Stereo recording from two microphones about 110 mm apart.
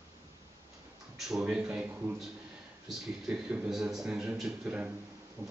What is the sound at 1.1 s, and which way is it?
Speech, 5° right (ahead or behind).